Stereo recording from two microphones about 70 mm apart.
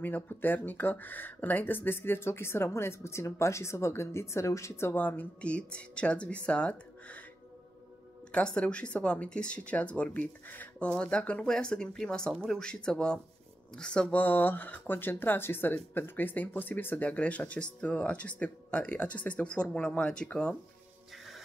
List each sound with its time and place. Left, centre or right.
0.0 s speech: left
8.3 s speech: centre
10.9 s speech: centre
14.1 s speech: left